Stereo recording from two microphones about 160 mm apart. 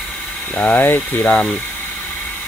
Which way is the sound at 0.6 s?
10° left (ahead or behind).